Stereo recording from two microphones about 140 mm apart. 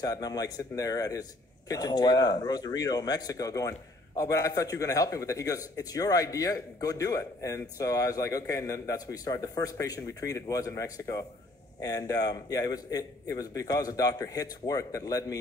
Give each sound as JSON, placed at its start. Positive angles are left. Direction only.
{"t": 0.0, "sound": "speech", "side_deg": 25}